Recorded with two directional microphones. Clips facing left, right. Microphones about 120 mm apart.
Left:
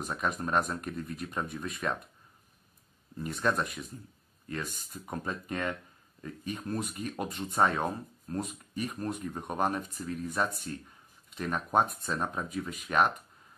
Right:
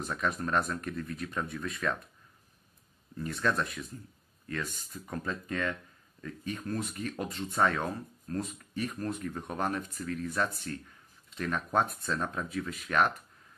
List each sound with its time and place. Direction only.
0.1 s speech: 15° left (ahead or behind)
3.2 s speech: 15° left (ahead or behind)
5.0 s speech: 20° left (ahead or behind)